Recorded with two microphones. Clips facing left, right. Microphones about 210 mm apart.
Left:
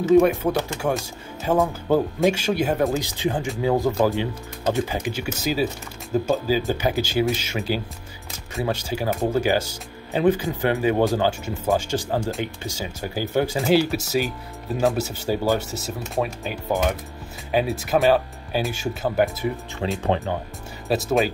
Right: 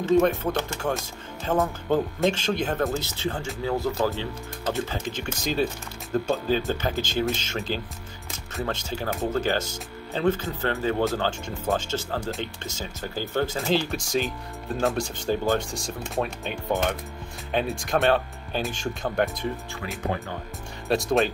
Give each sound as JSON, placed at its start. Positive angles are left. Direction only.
{"t": 0.0, "sound": "speech", "side_deg": 10}
{"t": 19.8, "sound": "speech", "side_deg": 25}
{"t": 20.9, "sound": "speech", "side_deg": 0}